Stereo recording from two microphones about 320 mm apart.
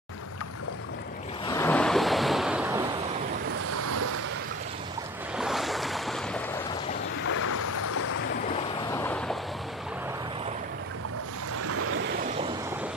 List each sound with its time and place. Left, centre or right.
1.4 s vehicle: centre
3.7 s waves: right
5.4 s waves: centre
7.2 s boat: left
8.9 s boat: centre
11.6 s boat: right